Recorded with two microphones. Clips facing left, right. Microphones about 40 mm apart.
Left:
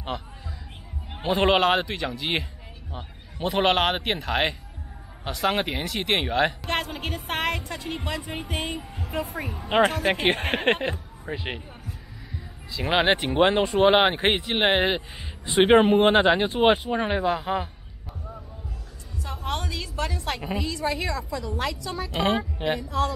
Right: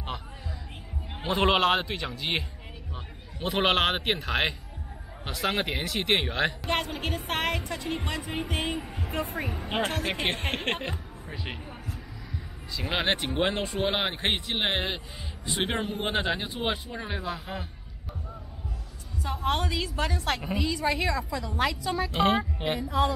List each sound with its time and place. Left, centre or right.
1.1 s speech: centre
10.4 s speech: centre
12.9 s speech: centre
15.8 s speech: left
16.1 s speech: left
17.1 s speech: left
19.2 s a woman's voice: centre